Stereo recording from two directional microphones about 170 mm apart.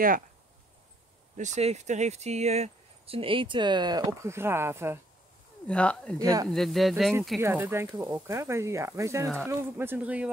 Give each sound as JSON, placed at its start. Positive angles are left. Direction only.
{"t": 1.3, "sound": "speech", "side_deg": -45}
{"t": 5.7, "sound": "speech", "side_deg": 5}
{"t": 6.1, "sound": "speech", "side_deg": -20}
{"t": 6.5, "sound": "speech", "side_deg": 0}
{"t": 7.3, "sound": "speech", "side_deg": -15}